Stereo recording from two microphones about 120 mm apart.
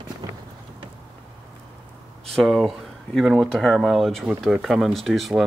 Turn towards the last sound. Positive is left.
turn(degrees=0)  # may be behind; listen again after turning